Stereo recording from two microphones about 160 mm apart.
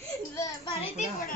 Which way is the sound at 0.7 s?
35° left (ahead or behind).